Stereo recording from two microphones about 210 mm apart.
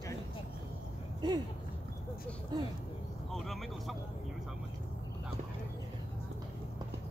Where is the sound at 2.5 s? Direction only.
20° right (ahead or behind).